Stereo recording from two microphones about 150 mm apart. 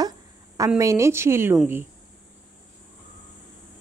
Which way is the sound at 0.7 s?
20° right (ahead or behind).